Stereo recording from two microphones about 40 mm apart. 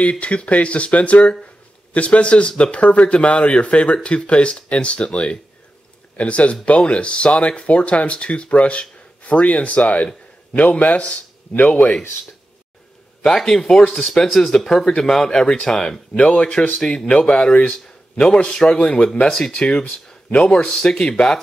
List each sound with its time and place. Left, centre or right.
0.1 s a man's voice: left
13.2 s speech: centre
15.2 s speech: left
15.7 s speech: centre
16.2 s speech: left
20.7 s speech: centre